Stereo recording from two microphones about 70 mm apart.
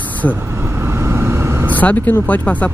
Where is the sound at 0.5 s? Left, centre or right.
Right.